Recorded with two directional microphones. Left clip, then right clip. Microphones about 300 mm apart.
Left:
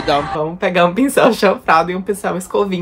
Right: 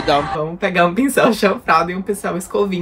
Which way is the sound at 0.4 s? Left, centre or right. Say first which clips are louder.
Left 2 dB; centre.